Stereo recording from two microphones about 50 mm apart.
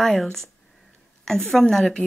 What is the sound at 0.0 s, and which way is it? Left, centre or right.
Speech, centre.